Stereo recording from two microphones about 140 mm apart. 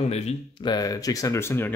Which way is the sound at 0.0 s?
50° left (ahead or behind).